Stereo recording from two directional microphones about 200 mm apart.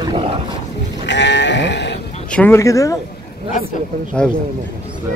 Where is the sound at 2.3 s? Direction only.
10° left (ahead or behind).